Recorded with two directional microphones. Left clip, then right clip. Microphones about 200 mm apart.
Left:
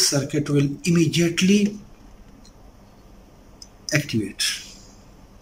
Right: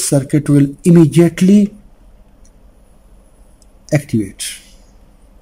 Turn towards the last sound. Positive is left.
turn(degrees=-30)  # may be behind; listen again after turning